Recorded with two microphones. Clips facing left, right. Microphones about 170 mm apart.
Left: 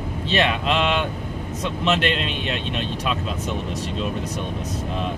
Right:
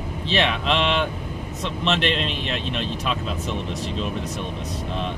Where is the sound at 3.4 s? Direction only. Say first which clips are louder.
Left 1 dB; 40° left (ahead or behind).